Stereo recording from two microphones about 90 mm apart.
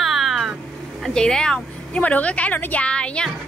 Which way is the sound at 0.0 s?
Centre (ahead or behind).